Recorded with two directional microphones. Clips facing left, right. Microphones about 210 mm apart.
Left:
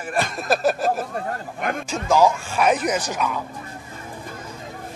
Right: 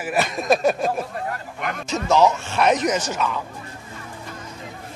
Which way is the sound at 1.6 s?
50° left (ahead or behind).